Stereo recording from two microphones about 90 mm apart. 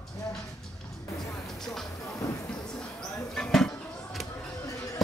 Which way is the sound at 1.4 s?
5° left (ahead or behind).